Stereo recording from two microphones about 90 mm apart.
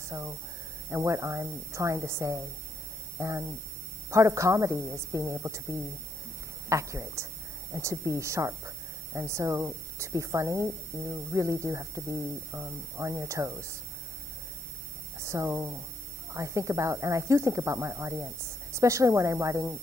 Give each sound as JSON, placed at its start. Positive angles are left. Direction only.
{"t": 0.1, "sound": "a woman's voice", "side_deg": -30}
{"t": 15.1, "sound": "a woman's voice", "side_deg": -35}